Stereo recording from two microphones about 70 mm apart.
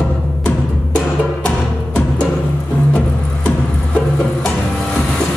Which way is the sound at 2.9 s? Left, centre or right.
Centre.